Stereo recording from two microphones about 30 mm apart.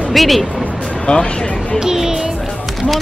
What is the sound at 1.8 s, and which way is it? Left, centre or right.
Music, centre.